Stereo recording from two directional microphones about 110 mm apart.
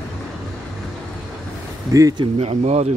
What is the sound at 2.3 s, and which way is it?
Speech, 75° right (ahead or behind).